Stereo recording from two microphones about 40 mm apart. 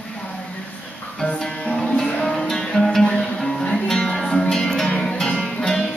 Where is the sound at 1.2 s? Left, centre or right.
Centre.